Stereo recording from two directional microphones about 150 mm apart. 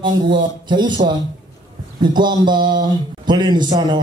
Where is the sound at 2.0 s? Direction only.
30° right (ahead or behind).